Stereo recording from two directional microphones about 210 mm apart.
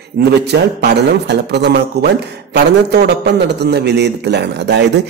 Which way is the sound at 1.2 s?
55° right (ahead or behind).